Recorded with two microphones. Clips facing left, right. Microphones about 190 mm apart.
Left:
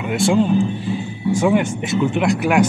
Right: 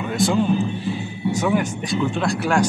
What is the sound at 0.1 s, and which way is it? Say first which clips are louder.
Speech: left 3 dB; 25° left (ahead or behind).